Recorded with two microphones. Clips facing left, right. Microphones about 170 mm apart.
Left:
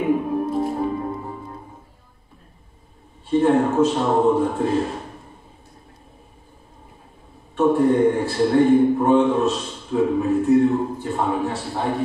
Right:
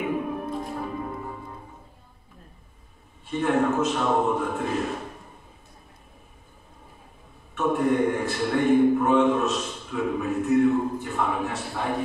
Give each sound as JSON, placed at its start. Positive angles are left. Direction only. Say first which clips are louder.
{"t": 0.5, "sound": "music", "louder": "left 8 dB", "side_deg": 30}
{"t": 3.3, "sound": "a man's voice", "louder": "left 6 dB", "side_deg": 30}
{"t": 7.5, "sound": "a man's voice", "louder": "left 6 dB", "side_deg": 30}